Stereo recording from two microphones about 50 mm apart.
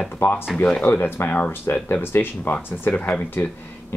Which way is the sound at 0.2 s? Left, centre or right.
Left.